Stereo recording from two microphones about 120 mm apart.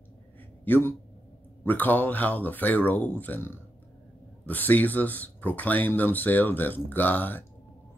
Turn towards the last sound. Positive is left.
turn(degrees=15)  # may be behind; listen again after turning